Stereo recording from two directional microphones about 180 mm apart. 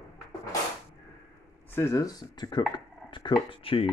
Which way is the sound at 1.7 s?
15° left (ahead or behind).